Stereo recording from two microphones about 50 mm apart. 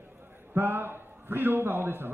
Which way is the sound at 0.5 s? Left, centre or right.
Right.